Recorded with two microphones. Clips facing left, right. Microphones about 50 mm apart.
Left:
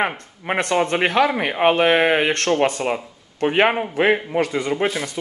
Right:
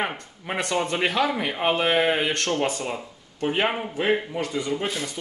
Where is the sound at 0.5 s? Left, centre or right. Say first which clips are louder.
Left 6 dB; left.